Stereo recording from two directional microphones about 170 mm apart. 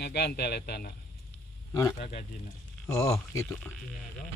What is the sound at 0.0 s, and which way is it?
Speech, 75° left (ahead or behind).